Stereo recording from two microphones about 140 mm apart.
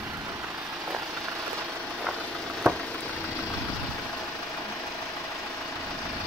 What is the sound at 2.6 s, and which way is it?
Frying, 20° right (ahead or behind).